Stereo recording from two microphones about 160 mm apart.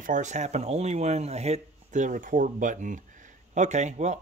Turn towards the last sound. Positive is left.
turn(degrees=-45)  # may be behind; listen again after turning